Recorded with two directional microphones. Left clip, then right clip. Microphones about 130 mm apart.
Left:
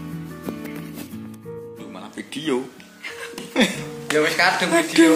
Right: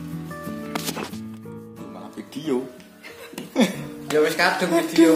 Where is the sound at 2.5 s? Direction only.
10° left (ahead or behind).